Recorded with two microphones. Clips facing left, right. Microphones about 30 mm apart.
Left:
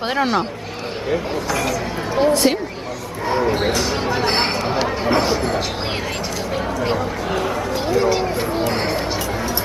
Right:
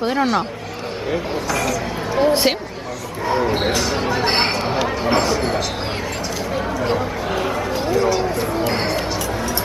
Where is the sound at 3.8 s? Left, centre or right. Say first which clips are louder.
Even; centre.